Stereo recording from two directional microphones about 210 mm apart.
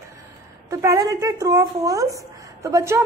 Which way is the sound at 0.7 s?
15° right (ahead or behind).